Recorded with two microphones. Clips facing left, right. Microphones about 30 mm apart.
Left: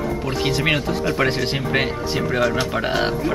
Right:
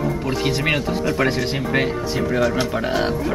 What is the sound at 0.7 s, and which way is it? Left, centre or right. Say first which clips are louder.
Speech: even; centre.